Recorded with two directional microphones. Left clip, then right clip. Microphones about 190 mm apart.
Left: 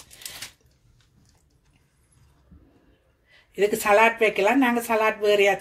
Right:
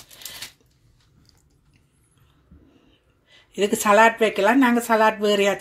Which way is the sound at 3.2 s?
35° right (ahead or behind).